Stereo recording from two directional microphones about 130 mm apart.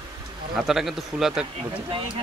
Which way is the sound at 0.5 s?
5° right (ahead or behind).